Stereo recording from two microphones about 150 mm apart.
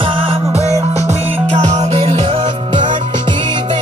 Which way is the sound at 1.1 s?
50° right (ahead or behind).